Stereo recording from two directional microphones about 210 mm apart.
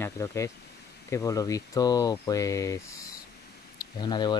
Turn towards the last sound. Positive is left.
turn(degrees=20)  # may be behind; listen again after turning